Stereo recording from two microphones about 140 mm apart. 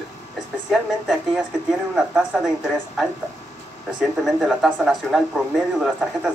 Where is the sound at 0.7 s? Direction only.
Centre (ahead or behind).